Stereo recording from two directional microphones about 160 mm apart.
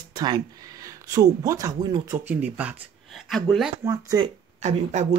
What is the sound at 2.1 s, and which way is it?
Speech, 10° right (ahead or behind).